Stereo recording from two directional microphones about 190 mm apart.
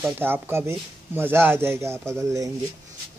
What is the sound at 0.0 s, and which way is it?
Speech, 10° right (ahead or behind).